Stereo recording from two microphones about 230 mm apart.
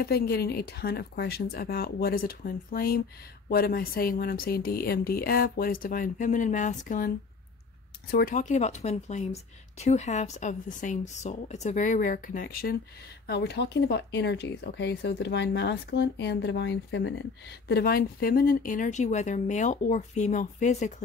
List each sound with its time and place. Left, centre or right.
0.0 s a woman's voice: left